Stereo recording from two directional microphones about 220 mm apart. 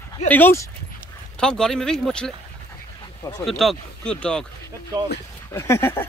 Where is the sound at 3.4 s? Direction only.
Centre (ahead or behind).